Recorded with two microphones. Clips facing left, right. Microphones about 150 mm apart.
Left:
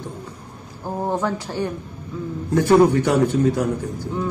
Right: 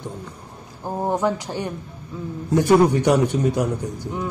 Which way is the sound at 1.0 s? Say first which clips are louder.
Right 2 dB; 15° right (ahead or behind).